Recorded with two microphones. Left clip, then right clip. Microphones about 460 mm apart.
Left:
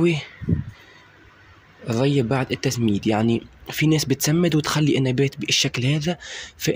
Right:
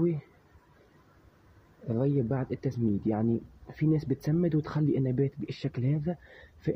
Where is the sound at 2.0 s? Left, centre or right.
Right.